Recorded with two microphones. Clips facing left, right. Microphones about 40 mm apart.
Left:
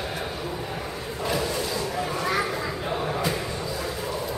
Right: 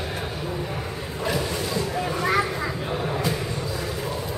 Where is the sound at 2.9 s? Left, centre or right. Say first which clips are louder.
Even; centre.